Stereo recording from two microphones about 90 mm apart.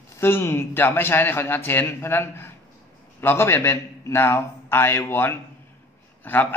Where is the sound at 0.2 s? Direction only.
25° left (ahead or behind).